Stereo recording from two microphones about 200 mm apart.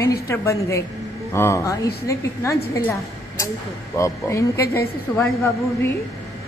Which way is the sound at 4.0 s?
15° left (ahead or behind).